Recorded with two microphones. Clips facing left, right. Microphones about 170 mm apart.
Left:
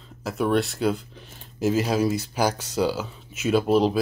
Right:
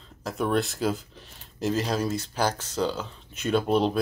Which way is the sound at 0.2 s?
Centre (ahead or behind).